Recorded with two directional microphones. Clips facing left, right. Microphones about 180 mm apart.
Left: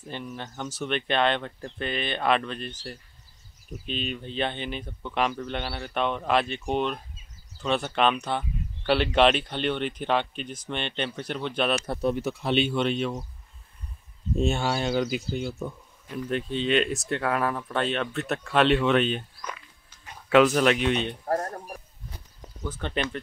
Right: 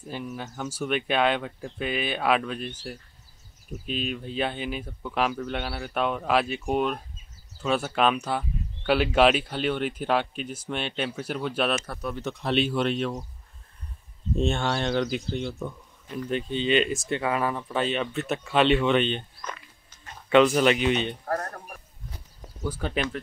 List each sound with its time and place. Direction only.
0.0 s speech: 5° right (ahead or behind)
11.8 s speech: 25° left (ahead or behind)
12.2 s speech: 5° left (ahead or behind)
14.3 s speech: 5° left (ahead or behind)
21.3 s speech: 25° left (ahead or behind)
22.6 s speech: 5° right (ahead or behind)